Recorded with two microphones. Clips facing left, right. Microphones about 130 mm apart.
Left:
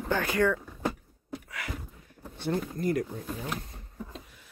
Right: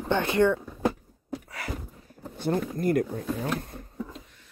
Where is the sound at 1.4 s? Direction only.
35° right (ahead or behind).